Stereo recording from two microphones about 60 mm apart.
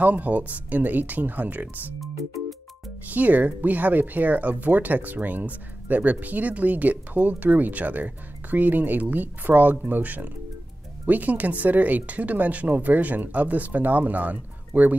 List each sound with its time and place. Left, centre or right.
0.0 s speech: right
3.1 s speech: right